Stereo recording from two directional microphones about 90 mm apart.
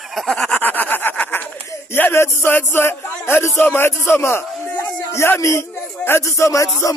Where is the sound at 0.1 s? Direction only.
Centre (ahead or behind).